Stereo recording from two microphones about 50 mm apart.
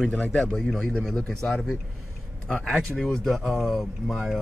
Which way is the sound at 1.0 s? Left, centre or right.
Centre.